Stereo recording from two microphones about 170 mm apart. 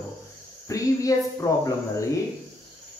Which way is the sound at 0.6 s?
20° left (ahead or behind).